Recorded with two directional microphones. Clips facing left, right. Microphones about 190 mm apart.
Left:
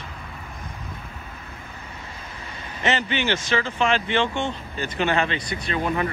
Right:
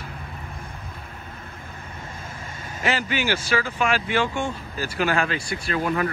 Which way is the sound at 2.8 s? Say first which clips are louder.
Left 1 dB; 5° right (ahead or behind).